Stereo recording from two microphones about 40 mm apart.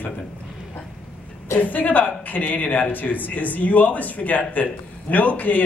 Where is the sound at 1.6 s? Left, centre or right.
Left.